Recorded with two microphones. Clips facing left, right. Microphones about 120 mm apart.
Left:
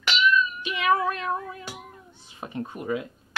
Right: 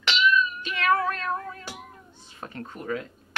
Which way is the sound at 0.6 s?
15° left (ahead or behind).